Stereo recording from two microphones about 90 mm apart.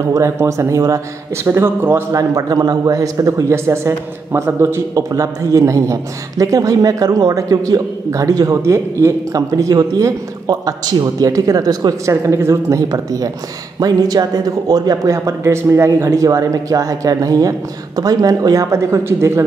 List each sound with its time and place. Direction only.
0.0 s a man's voice: 35° right (ahead or behind)
12.1 s a man's voice: 35° right (ahead or behind)
15.1 s a man's voice: 35° right (ahead or behind)